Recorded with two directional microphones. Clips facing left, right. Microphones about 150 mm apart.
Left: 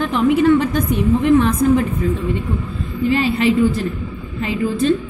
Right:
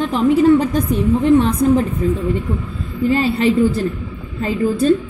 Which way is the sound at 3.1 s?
35° right (ahead or behind).